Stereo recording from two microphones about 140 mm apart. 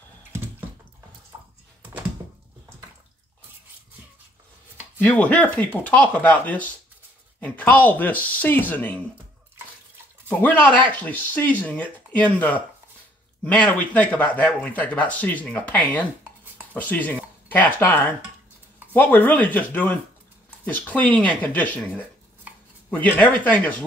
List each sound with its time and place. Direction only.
1.3 s a sound: 25° right (ahead or behind)
4.9 s speech: 10° left (ahead or behind)
10.4 s speech: 10° left (ahead or behind)